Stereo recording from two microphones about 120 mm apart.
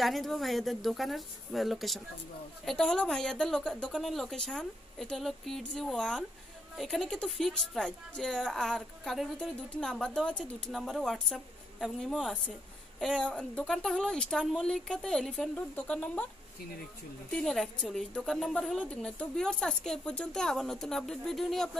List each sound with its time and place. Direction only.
0.0 s a woman's voice: centre (ahead or behind)
17.3 s a woman's voice: 5° left (ahead or behind)